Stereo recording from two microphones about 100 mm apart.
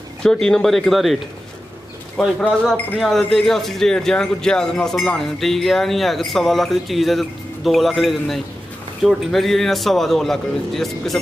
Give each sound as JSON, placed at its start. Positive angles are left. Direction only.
{"t": 0.2, "sound": "speech", "side_deg": 5}
{"t": 2.1, "sound": "speech", "side_deg": 5}